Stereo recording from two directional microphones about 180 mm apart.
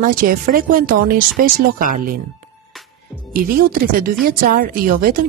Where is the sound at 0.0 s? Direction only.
50° right (ahead or behind).